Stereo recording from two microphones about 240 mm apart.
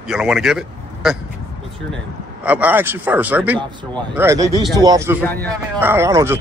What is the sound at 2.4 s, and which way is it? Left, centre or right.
Speech, centre.